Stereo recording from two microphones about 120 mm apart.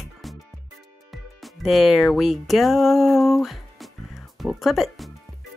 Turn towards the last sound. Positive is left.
turn(degrees=0)  # may be behind; listen again after turning